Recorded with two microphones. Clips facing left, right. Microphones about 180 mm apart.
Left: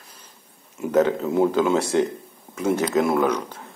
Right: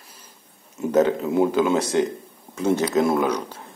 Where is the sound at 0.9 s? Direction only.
20° right (ahead or behind).